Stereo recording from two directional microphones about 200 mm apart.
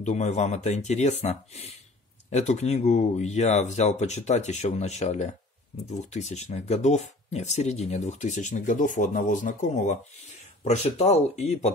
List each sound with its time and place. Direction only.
0.0 s speech: 35° left (ahead or behind)